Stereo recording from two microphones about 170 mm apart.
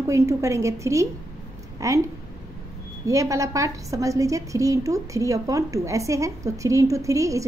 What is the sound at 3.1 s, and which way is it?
A woman's voice, 20° right (ahead or behind).